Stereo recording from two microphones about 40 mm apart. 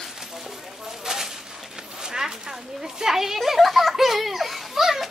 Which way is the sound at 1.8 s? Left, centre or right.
Centre.